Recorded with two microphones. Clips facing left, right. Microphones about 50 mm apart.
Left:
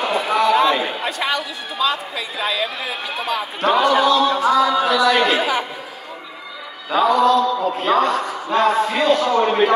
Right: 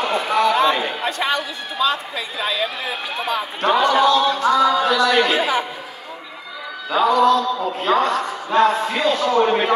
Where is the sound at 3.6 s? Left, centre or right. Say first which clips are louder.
Even; centre.